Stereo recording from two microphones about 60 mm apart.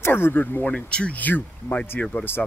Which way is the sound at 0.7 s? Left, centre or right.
Centre.